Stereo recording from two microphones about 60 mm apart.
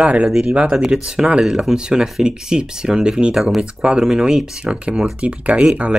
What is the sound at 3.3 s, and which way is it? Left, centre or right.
Speech, centre.